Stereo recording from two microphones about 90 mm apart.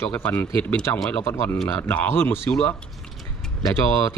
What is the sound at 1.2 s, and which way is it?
Speech, 30° left (ahead or behind).